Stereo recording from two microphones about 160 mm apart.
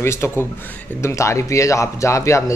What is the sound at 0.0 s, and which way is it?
Speech, 15° left (ahead or behind).